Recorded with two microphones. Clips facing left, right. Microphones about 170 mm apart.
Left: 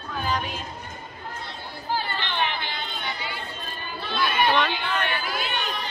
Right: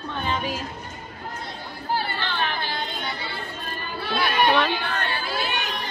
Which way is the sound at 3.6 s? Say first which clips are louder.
Right 3 dB; 55° right (ahead or behind).